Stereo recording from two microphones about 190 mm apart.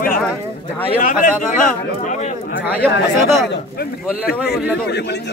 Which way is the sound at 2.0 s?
40° left (ahead or behind).